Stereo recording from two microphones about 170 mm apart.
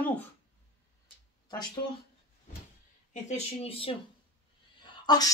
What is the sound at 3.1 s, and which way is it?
Speech, 40° left (ahead or behind).